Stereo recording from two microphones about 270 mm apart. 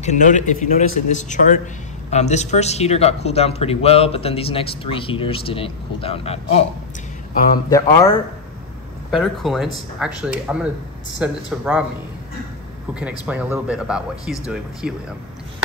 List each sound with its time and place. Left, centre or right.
0.0 s a man's voice: left
7.7 s speech: centre
9.1 s speech: centre
12.9 s speech: centre